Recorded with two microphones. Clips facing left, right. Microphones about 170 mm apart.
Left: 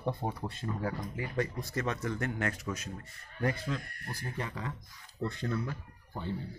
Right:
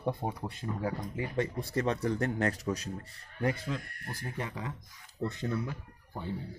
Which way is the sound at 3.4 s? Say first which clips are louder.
Right 1 dB; 20° right (ahead or behind).